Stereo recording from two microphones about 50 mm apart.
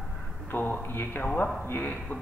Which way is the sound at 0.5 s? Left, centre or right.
Left.